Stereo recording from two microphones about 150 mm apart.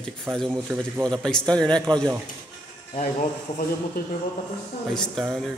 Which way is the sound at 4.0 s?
80° left.